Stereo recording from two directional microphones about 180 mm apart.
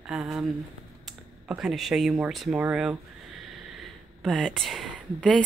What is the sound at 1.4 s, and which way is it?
Speech, 5° right (ahead or behind).